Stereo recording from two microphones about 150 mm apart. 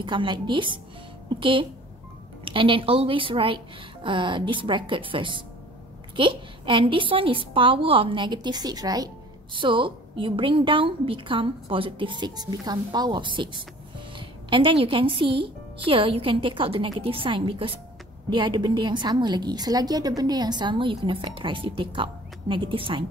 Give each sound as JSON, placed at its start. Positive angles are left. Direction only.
{"t": 0.0, "sound": "a woman's voice", "side_deg": -30}